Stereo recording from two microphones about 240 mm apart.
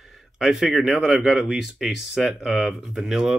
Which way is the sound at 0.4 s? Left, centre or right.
Centre.